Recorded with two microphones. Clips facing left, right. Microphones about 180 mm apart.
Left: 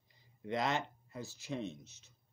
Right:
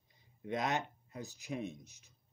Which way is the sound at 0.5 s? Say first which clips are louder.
Even; 20° right (ahead or behind).